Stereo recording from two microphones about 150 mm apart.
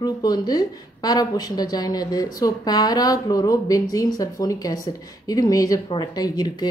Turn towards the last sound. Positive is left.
turn(degrees=25)  # may be behind; listen again after turning